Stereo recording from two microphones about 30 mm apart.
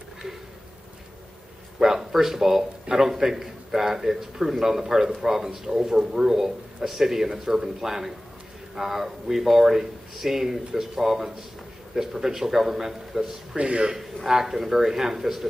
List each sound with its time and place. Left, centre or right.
1.8 s a man's voice: centre
13.6 s a man's voice: right
14.3 s a man's voice: centre